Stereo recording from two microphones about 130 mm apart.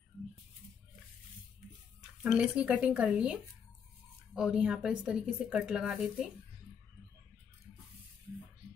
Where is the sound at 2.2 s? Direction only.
10° right (ahead or behind).